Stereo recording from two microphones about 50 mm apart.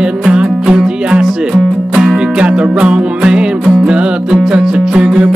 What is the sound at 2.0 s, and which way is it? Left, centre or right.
Music, centre.